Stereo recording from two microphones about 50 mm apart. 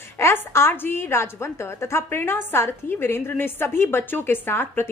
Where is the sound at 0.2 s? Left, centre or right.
Left.